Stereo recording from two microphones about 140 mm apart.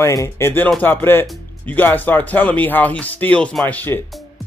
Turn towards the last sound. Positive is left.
turn(degrees=15)  # may be behind; listen again after turning